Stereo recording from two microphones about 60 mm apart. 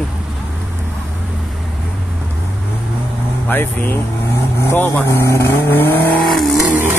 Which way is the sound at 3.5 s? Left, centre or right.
Left.